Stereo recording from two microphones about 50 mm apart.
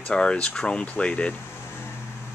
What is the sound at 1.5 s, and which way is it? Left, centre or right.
Vehicle, left.